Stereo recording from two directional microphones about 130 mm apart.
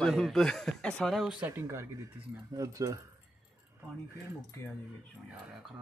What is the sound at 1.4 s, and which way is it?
Speech, 20° right (ahead or behind).